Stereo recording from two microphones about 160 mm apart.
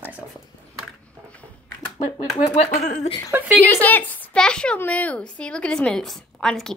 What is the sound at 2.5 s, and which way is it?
Speech, 45° left (ahead or behind).